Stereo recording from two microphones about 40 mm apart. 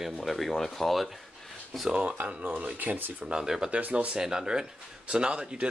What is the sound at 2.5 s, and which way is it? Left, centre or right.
Speech, right.